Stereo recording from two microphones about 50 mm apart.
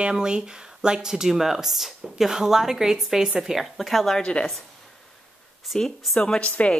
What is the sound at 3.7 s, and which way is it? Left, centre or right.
Speech, centre.